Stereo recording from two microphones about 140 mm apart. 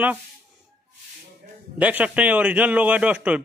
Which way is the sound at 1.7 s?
10° right (ahead or behind).